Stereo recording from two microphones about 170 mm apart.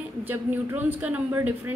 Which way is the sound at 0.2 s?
10° right (ahead or behind).